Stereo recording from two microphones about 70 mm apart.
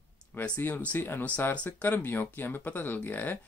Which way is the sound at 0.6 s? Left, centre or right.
Left.